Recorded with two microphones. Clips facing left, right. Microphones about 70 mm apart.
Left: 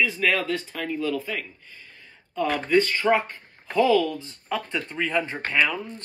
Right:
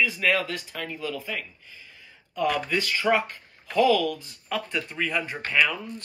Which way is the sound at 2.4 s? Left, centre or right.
Left.